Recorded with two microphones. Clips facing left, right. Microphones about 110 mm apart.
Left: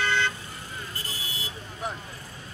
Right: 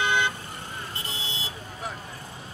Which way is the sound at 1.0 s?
25° right (ahead or behind).